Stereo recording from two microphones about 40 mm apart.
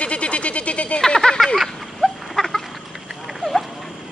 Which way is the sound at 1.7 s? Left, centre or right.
Centre.